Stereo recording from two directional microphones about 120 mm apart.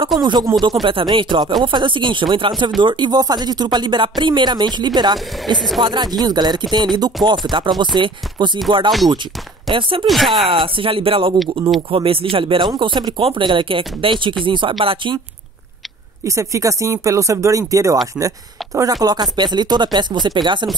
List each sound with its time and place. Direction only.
0.2 s speech: 35° right (ahead or behind)
7.2 s speech: centre (ahead or behind)
7.8 s speech: 40° right (ahead or behind)
10.0 s speech: centre (ahead or behind)
10.5 s speech: 50° right (ahead or behind)
16.3 s speech: 25° right (ahead or behind)